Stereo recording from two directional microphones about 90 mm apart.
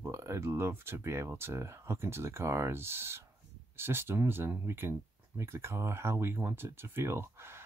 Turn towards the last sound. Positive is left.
turn(degrees=-30)  # may be behind; listen again after turning